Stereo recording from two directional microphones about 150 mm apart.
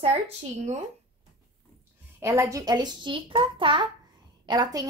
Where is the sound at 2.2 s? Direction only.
20° right (ahead or behind).